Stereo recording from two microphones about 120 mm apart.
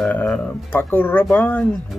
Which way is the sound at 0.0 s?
10° left (ahead or behind).